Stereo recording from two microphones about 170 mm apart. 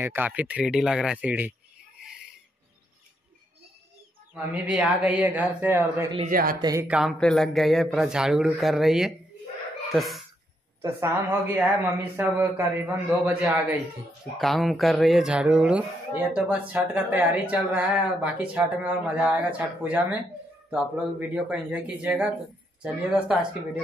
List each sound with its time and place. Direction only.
0.0 s speech: 10° right (ahead or behind)
4.3 s speech: 5° right (ahead or behind)
6.9 s a man's voice: centre (ahead or behind)
10.8 s speech: 15° right (ahead or behind)
14.3 s a man's voice: centre (ahead or behind)